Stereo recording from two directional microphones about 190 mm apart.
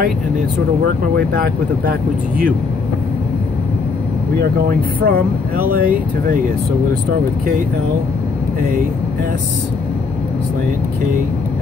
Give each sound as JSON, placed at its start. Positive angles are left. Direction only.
{"t": 0.8, "sound": "speech", "side_deg": -50}
{"t": 4.4, "sound": "speech", "side_deg": -50}